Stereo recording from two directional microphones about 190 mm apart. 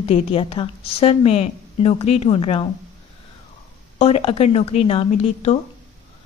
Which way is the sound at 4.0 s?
30° left (ahead or behind).